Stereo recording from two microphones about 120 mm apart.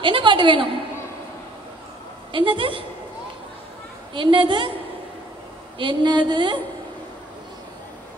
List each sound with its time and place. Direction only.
0.0 s a woman's voice: 45° right (ahead or behind)
2.3 s a woman's voice: 45° right (ahead or behind)
4.1 s a woman's voice: 45° right (ahead or behind)
5.8 s speech: 40° right (ahead or behind)